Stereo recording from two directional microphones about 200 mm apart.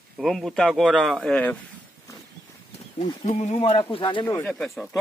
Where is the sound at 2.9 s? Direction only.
30° left (ahead or behind).